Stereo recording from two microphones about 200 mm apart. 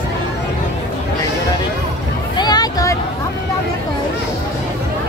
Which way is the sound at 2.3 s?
20° left (ahead or behind).